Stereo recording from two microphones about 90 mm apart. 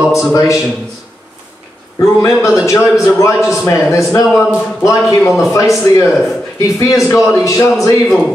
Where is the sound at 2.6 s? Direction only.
35° left (ahead or behind).